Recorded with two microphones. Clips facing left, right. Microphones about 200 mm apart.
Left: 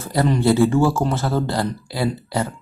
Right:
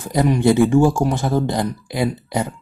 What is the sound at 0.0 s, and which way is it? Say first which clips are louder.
Speech: right 2 dB; 15° right (ahead or behind).